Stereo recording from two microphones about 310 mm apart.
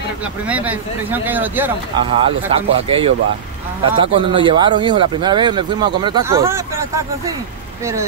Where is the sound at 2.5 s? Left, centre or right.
Centre.